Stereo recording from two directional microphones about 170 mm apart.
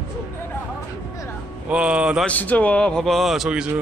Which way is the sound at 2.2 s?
10° left (ahead or behind).